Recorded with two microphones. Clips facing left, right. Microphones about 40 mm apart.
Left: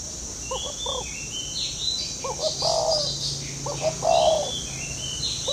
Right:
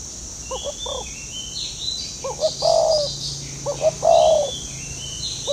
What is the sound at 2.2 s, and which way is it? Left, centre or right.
Bird, centre.